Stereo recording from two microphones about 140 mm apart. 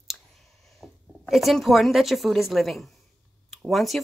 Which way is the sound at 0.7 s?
Centre (ahead or behind).